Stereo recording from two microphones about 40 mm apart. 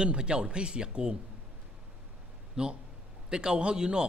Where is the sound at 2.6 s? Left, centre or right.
Right.